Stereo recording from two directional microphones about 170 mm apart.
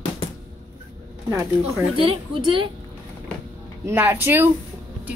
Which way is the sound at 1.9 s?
30° right (ahead or behind).